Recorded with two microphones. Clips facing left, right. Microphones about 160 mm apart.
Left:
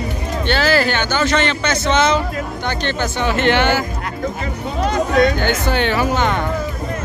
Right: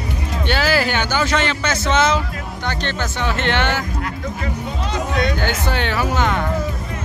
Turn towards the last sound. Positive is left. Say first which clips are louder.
# left 3 dB
turn(degrees=0)  # may be behind; listen again after turning